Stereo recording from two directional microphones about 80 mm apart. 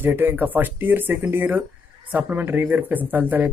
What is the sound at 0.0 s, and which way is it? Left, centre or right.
A man's voice, right.